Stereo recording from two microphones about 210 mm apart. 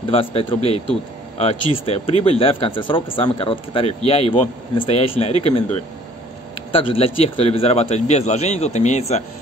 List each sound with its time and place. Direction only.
0.1 s speech: 25° left (ahead or behind)